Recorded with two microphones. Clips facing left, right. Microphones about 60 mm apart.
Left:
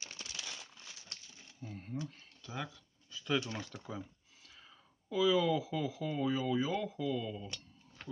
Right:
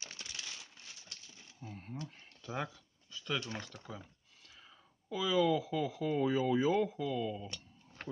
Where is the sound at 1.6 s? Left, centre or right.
Centre.